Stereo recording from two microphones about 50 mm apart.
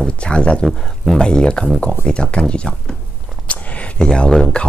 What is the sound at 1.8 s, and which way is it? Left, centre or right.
Speech, left.